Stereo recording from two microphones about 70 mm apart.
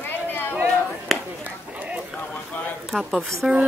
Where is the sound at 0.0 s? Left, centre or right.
Left.